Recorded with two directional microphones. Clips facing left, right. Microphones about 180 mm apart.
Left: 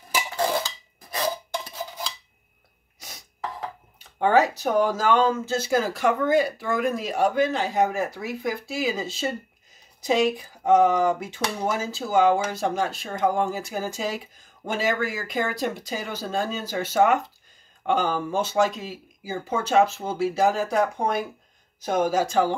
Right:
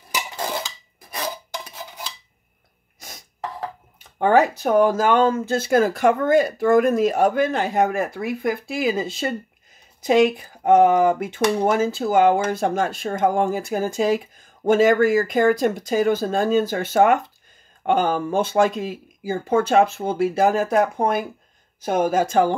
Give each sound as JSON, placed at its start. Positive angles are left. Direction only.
{"t": 4.2, "sound": "speech", "side_deg": -55}